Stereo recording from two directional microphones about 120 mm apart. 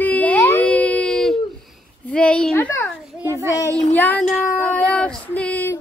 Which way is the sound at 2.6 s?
20° left (ahead or behind).